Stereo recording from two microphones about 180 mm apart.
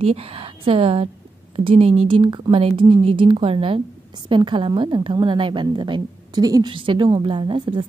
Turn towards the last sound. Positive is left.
turn(degrees=-25)  # may be behind; listen again after turning